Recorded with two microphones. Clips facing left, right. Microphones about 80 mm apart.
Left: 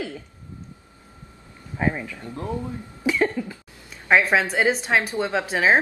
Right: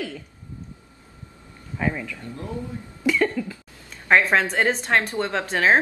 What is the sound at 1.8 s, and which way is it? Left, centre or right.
Speech, left.